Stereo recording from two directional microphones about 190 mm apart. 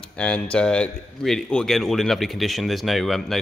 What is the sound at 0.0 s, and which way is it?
Speech, 5° left (ahead or behind).